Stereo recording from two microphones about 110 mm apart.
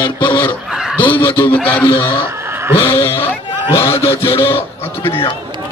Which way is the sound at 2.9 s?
20° left (ahead or behind).